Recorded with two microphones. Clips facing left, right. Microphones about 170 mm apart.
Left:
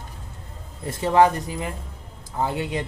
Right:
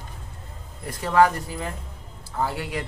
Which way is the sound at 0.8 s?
25° left (ahead or behind).